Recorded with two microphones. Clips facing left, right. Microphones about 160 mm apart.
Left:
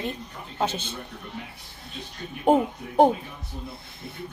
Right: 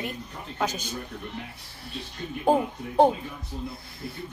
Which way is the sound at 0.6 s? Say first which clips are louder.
Left 2 dB; 25° left (ahead or behind).